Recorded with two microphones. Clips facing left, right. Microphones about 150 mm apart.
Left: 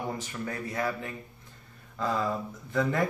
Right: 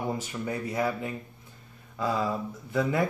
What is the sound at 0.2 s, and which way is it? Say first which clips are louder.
Speech: right 3 dB; 15° right (ahead or behind).